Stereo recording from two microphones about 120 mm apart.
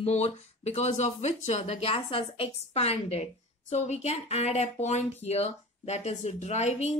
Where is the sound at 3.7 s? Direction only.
70° left (ahead or behind).